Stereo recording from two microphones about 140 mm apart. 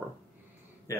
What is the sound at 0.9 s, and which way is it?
Speech, 20° left (ahead or behind).